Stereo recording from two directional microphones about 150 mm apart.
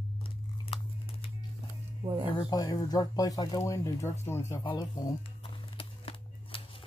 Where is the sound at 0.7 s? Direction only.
35° left (ahead or behind).